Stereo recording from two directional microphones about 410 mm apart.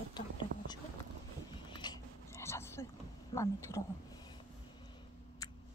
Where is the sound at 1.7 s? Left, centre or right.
Centre.